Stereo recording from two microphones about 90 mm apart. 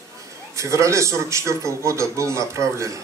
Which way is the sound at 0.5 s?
35° right (ahead or behind).